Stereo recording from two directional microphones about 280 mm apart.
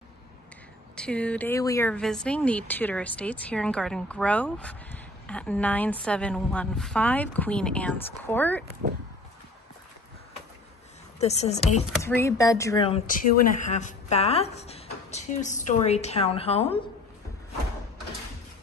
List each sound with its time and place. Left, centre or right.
0.9 s speech: centre
11.1 s speech: left
12.0 s speech: centre